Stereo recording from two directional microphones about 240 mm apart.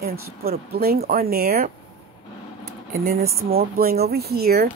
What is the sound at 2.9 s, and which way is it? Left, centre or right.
Speech, right.